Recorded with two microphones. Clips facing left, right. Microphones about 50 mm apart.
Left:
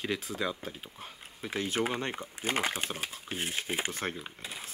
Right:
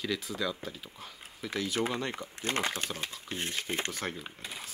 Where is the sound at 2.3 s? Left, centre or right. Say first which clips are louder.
Left 1 dB; centre.